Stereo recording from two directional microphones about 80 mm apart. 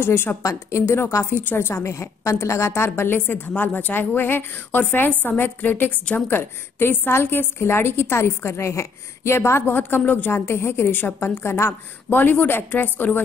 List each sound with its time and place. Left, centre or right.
0.0 s a woman's voice: left
0.4 s a woman's voice: left